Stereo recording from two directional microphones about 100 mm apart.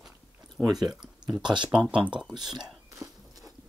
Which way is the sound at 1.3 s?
50° right (ahead or behind).